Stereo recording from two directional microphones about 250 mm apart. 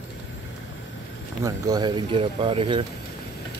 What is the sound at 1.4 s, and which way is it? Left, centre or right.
Speech, centre.